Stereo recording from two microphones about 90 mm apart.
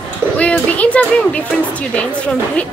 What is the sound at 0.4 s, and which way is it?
A woman's voice, 15° left (ahead or behind).